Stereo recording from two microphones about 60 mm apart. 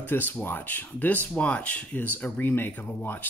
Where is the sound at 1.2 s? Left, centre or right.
Left.